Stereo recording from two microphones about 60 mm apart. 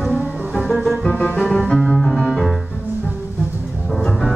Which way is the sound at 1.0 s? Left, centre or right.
Left.